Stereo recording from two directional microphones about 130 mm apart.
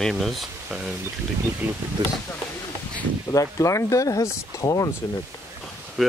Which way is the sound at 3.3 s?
25° left (ahead or behind).